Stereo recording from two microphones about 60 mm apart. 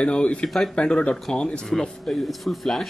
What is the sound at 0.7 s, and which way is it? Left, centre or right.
Speech, centre.